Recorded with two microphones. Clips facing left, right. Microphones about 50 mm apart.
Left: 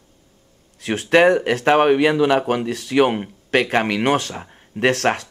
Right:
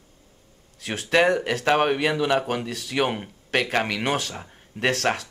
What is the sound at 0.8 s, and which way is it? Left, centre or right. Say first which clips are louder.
Speech: left 6 dB; left.